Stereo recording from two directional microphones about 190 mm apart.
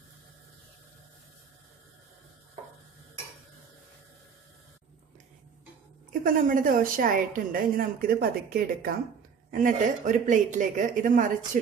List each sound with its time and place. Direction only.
6.2 s a woman's voice: 45° right (ahead or behind)